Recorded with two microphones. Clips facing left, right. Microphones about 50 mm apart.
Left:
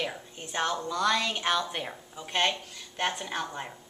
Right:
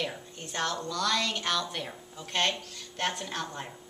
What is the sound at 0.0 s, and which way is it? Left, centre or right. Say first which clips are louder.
A woman's voice: left 1 dB; centre.